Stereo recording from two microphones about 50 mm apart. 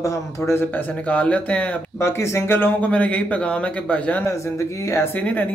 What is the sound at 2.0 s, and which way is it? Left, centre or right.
Speech, left.